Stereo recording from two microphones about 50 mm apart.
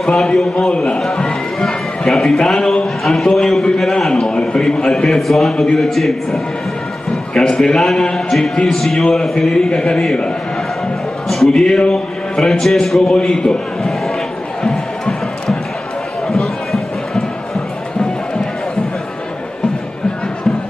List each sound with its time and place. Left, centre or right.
0.0 s a man's voice: centre
1.0 s a sound: centre
3.0 s a man's voice: centre
3.7 s a sound: centre
5.8 s a man's voice: centre
11.6 s a man's voice: centre
13.2 s a man's voice: centre
14.6 s music: centre
16.3 s run: centre